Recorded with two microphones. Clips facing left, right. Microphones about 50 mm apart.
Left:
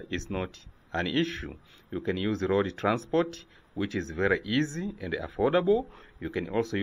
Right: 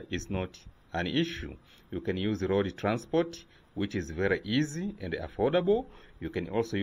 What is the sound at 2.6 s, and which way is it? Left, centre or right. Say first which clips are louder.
Speech: left 2 dB; left.